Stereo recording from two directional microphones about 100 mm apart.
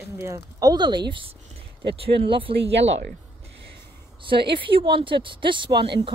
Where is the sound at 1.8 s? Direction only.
70° right (ahead or behind).